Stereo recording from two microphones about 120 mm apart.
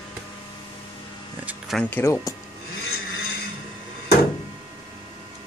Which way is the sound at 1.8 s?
15° left (ahead or behind).